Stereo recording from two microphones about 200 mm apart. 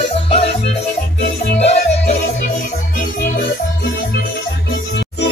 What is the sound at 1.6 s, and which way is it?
Music, 30° left (ahead or behind).